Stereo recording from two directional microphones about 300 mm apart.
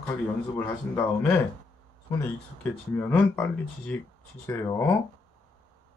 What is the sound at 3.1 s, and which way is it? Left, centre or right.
Speech, centre.